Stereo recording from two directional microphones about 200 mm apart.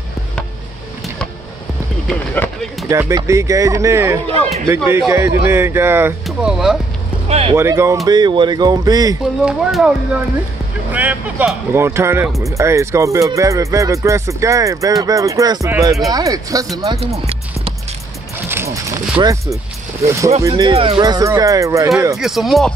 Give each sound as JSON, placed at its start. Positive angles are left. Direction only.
{"t": 2.0, "sound": "run", "side_deg": 5}
{"t": 2.9, "sound": "speech", "side_deg": -15}
{"t": 7.2, "sound": "speech", "side_deg": -30}
{"t": 7.5, "sound": "speech", "side_deg": -15}
{"t": 9.4, "sound": "speech", "side_deg": 0}
{"t": 18.5, "sound": "wild animals", "side_deg": -15}
{"t": 19.1, "sound": "speech", "side_deg": -15}
{"t": 22.1, "sound": "speech", "side_deg": 0}